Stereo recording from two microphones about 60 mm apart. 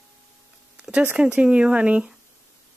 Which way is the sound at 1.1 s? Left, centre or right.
Right.